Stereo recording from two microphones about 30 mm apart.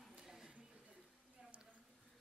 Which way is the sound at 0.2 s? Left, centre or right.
Centre.